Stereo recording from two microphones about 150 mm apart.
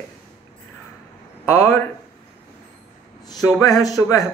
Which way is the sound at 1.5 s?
15° left (ahead or behind).